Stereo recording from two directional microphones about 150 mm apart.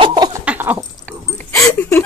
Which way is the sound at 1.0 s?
10° left (ahead or behind).